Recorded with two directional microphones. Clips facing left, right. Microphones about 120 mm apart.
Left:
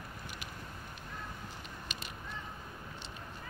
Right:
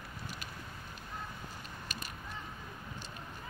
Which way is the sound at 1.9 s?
20° left (ahead or behind).